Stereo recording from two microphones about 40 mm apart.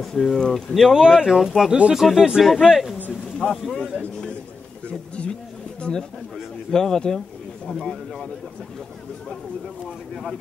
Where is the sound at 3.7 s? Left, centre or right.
Left.